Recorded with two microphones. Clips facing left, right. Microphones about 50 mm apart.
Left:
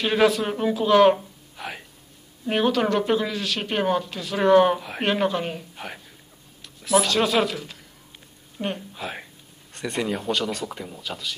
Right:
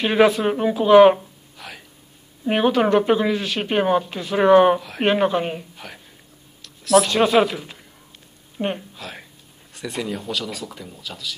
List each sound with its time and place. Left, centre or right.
0.0 s a woman's voice: centre
1.6 s a sound: centre
2.4 s a woman's voice: centre
6.6 s a sound: centre
7.1 s a woman's voice: centre
8.9 s speech: centre